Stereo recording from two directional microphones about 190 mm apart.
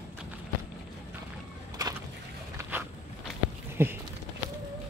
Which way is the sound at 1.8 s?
20° right (ahead or behind).